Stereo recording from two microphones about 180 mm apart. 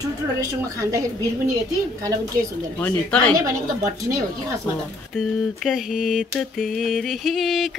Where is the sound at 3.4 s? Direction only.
20° right (ahead or behind).